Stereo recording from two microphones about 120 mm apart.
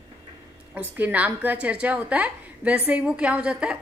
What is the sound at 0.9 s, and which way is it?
A woman's voice, 15° right (ahead or behind).